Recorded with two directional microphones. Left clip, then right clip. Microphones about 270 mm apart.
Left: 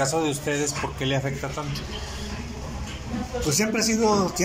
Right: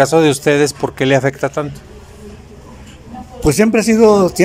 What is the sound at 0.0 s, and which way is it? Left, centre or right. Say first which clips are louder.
A man's voice: right 13 dB; right.